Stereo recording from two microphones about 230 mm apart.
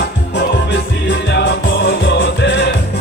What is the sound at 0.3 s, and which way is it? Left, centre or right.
Music, left.